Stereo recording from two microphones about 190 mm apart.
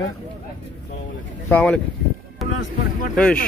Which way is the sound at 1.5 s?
5° left (ahead or behind).